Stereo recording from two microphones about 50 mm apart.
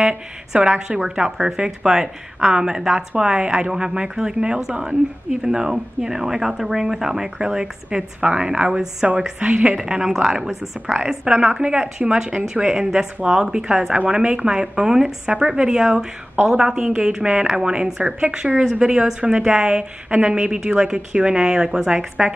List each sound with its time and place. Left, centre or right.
0.0 s speech: centre